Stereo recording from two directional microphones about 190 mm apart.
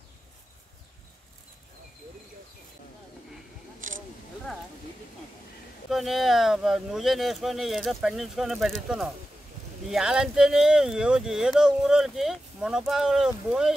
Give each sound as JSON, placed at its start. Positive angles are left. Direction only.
{"t": 3.8, "sound": "single-lens reflex camera", "side_deg": -45}
{"t": 5.9, "sound": "speech", "side_deg": 0}